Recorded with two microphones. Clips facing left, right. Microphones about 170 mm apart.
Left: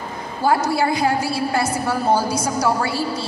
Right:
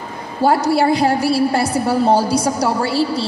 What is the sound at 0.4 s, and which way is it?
A woman's voice, 30° right (ahead or behind).